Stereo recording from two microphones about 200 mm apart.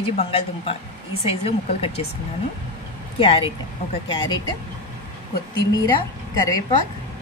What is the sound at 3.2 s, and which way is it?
Speech, 25° left (ahead or behind).